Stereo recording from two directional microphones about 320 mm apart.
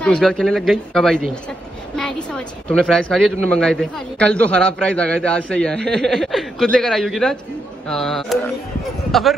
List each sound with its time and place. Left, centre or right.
0.0 s a woman's voice: centre